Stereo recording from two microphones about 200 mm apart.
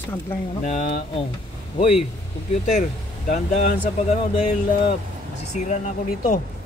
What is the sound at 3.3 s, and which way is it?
Speech, 35° left (ahead or behind).